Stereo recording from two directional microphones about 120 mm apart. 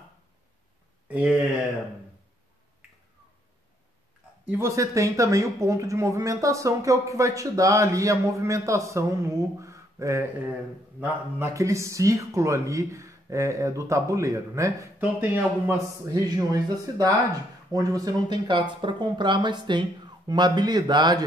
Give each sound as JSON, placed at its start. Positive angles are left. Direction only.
{"t": 1.0, "sound": "a sound", "side_deg": -10}
{"t": 4.5, "sound": "speech", "side_deg": -20}
{"t": 16.1, "sound": "speech", "side_deg": -30}